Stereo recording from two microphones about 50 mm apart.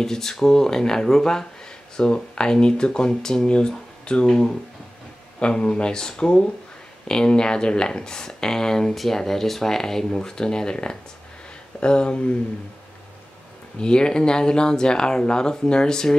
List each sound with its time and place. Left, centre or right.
0.0 s speech: centre
13.7 s speech: centre